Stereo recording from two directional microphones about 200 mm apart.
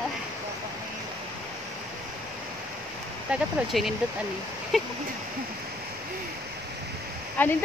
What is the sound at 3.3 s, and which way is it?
Speech, centre (ahead or behind).